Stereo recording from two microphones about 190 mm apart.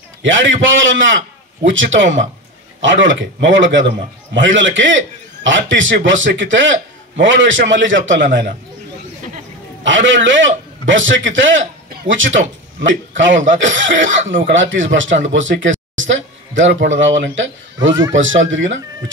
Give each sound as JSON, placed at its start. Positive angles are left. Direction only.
{"t": 0.2, "sound": "a man's voice", "side_deg": -90}
{"t": 9.8, "sound": "speech", "side_deg": -85}
{"t": 15.3, "sound": "a sound", "side_deg": -85}
{"t": 16.9, "sound": "speech", "side_deg": -80}